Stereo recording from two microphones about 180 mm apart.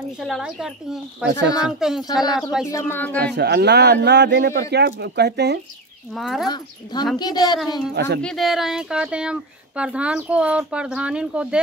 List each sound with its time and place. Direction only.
0.2 s speech: centre (ahead or behind)
1.2 s speech: 75° right (ahead or behind)
1.8 s speech: centre (ahead or behind)
2.6 s speech: 15° left (ahead or behind)
3.3 s speech: 70° right (ahead or behind)
6.1 s speech: centre (ahead or behind)
6.4 s speech: 25° left (ahead or behind)
7.5 s speech: centre (ahead or behind)
7.9 s speech: 70° right (ahead or behind)
8.2 s speech: centre (ahead or behind)